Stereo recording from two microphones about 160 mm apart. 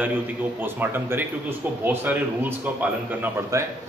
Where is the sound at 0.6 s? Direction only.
15° right (ahead or behind).